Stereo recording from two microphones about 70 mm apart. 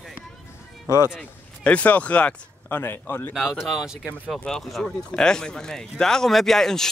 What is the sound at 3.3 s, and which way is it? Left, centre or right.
Speech, centre.